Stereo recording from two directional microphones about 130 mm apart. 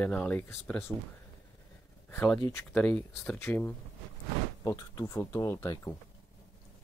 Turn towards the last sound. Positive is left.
turn(degrees=20)  # may be behind; listen again after turning